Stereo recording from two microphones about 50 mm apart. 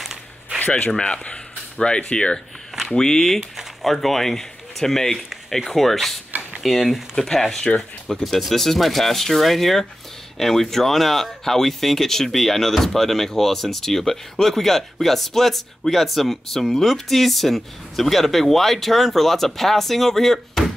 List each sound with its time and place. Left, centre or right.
0.0 s a sound: centre
0.9 s speech: left
3.3 s speech: centre